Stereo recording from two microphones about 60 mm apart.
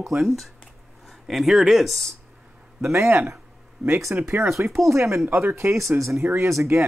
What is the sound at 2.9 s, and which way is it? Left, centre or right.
Speech, right.